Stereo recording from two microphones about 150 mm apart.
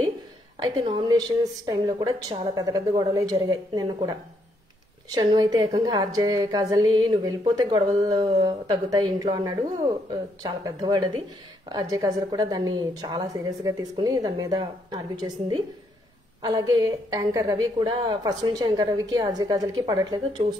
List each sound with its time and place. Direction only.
0.6 s a woman's voice: 30° right (ahead or behind)